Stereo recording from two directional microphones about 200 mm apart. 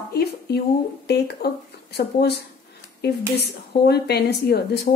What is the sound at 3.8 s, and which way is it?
Speech, 55° left (ahead or behind).